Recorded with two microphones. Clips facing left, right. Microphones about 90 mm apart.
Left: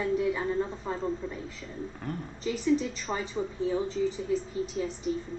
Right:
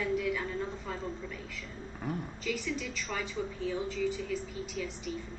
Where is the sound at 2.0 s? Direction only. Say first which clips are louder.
Right 2 dB; 5° right (ahead or behind).